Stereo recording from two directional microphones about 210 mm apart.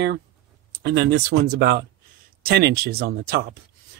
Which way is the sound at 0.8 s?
50° right (ahead or behind).